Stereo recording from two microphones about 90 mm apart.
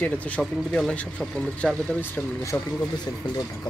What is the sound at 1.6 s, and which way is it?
Speech, 5° left (ahead or behind).